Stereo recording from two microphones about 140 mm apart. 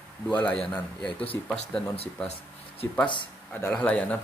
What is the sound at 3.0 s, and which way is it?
Speech, 35° left (ahead or behind).